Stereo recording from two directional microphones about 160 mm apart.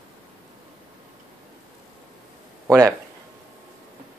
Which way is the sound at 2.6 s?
20° right (ahead or behind).